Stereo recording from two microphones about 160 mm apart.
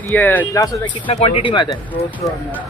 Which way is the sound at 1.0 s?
35° left (ahead or behind).